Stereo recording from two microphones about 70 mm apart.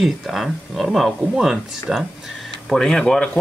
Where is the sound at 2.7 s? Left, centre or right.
Centre.